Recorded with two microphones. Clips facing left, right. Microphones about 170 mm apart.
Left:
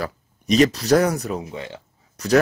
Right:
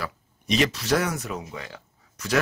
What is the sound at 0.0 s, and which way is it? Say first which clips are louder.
Speech: left 5 dB; 40° left (ahead or behind).